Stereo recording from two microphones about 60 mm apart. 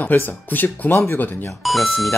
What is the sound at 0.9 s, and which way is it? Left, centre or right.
Speech, left.